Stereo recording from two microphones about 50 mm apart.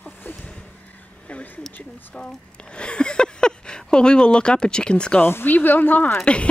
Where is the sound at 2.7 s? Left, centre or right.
Left.